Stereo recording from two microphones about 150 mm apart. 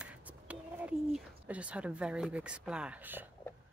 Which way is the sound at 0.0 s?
10° right (ahead or behind).